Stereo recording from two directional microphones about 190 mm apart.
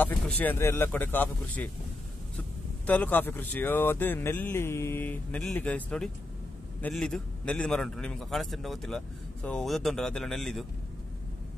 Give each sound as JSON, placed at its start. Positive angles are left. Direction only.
{"t": 0.0, "sound": "speech", "side_deg": 10}
{"t": 2.9, "sound": "a man's voice", "side_deg": 10}